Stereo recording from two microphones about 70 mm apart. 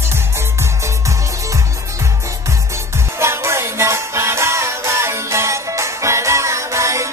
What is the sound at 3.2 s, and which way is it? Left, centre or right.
Music, right.